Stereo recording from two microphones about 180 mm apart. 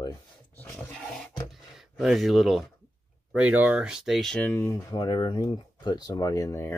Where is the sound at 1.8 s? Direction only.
Centre (ahead or behind).